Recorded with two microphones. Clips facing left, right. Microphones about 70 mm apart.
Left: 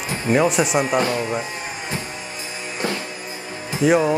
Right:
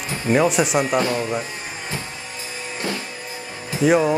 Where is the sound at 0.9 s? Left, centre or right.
Left.